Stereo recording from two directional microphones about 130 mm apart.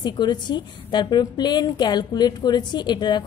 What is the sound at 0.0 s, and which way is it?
A woman's voice, 35° left (ahead or behind).